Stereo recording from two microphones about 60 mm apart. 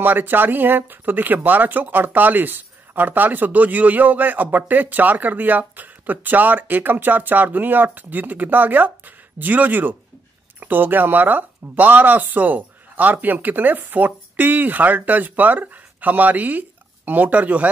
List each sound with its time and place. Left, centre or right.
0.0 s speech: right